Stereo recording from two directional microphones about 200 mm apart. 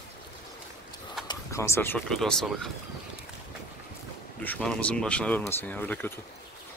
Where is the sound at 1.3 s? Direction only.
15° left (ahead or behind).